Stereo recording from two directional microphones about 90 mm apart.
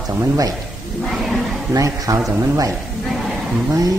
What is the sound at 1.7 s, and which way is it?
Speech, 40° right (ahead or behind).